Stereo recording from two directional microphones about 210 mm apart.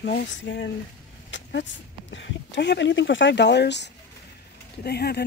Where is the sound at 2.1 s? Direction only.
60° left (ahead or behind).